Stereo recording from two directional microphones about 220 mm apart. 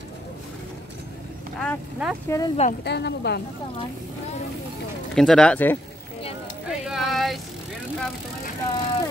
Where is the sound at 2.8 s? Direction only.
50° left (ahead or behind).